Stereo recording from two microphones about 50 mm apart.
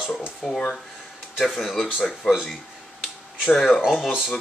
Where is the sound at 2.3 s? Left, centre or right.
Centre.